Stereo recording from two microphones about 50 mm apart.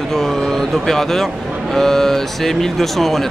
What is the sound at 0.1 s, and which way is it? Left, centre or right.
Speech, centre.